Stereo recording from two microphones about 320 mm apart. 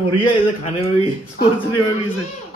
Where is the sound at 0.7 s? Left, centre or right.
Centre.